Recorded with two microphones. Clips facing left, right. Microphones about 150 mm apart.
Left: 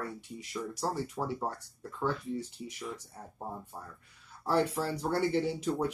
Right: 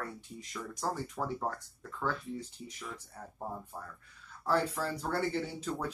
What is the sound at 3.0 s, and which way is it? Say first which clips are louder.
Speech: even; 15° left (ahead or behind).